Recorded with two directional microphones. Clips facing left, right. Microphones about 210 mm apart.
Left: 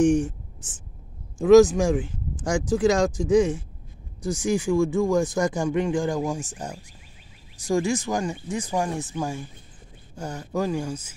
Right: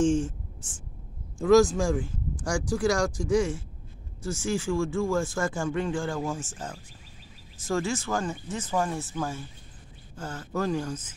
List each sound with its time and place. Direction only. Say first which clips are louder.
0.0 s speech: left 4 dB; 15° left (ahead or behind)